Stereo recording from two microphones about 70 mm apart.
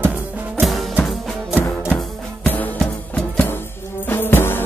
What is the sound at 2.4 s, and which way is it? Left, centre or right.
Music, left.